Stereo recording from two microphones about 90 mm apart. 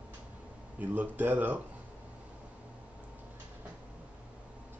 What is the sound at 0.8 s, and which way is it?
Speech, 20° right (ahead or behind).